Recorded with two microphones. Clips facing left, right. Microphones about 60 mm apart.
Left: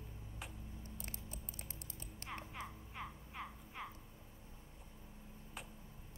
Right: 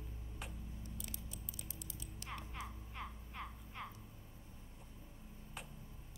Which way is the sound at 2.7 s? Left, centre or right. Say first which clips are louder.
Even; centre.